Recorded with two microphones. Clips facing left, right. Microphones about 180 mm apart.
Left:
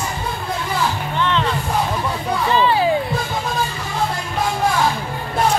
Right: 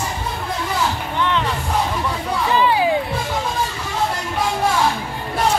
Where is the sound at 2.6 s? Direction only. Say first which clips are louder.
Even; 15° right (ahead or behind).